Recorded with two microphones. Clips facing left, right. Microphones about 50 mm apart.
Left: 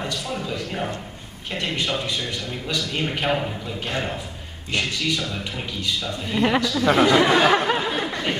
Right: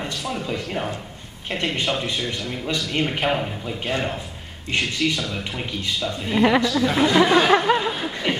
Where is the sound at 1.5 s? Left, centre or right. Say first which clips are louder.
Right 2 dB; right.